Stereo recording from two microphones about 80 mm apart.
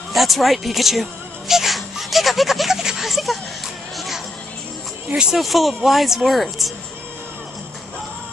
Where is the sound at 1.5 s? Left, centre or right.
Centre.